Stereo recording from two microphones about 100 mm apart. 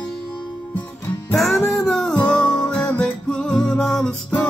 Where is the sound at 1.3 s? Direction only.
5° left (ahead or behind).